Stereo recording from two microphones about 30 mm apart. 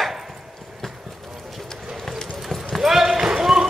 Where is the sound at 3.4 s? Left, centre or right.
Centre.